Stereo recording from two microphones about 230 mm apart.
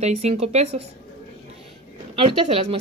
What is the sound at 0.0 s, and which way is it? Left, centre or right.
Speech, right.